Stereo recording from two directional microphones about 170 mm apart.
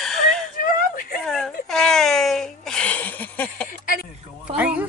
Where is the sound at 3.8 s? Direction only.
55° left (ahead or behind).